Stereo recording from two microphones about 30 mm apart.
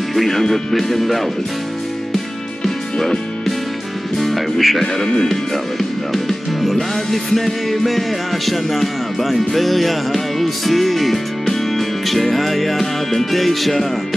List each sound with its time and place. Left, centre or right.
0.1 s music: centre
2.6 s music: centre
4.2 s music: centre
4.9 s speech: left
5.3 s music: centre